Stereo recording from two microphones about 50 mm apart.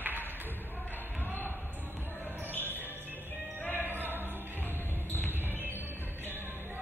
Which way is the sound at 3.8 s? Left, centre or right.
Right.